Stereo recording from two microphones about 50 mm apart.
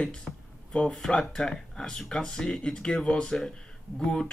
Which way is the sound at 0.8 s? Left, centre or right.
Centre.